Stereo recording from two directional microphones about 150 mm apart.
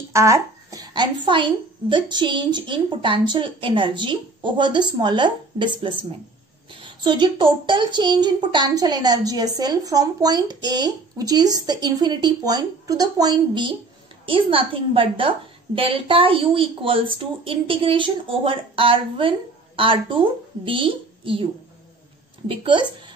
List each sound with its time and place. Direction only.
0.1 s a woman's voice: 20° right (ahead or behind); by 21.5 s 35° right (ahead or behind)
22.5 s a woman's voice: 35° right (ahead or behind)